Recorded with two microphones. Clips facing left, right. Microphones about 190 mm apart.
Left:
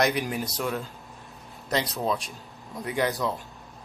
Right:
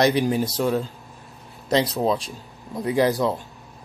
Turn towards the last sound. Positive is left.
turn(degrees=-35)  # may be behind; listen again after turning